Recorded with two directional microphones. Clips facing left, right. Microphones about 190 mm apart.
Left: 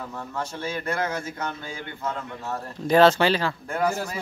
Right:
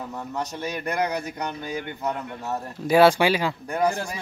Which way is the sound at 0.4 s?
15° right (ahead or behind).